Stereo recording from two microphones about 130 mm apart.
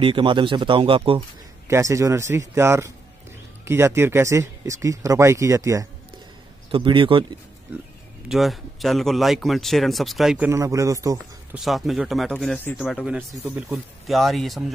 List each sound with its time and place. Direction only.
0.0 s speech: 40° right (ahead or behind)
1.7 s a man's voice: 25° right (ahead or behind)
6.7 s speech: 40° right (ahead or behind)
8.3 s a man's voice: centre (ahead or behind)
10.5 s a man's voice: 25° right (ahead or behind)
11.5 s a man's voice: centre (ahead or behind)